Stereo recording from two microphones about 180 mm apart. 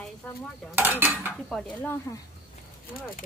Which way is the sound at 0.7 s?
10° right (ahead or behind).